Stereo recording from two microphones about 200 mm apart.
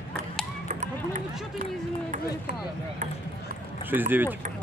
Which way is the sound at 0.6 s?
35° right (ahead or behind).